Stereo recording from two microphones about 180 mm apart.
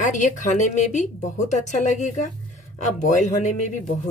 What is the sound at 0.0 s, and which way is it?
A man's voice, 45° left (ahead or behind).